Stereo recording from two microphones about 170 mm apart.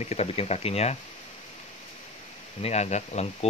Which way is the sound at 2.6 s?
40° left (ahead or behind).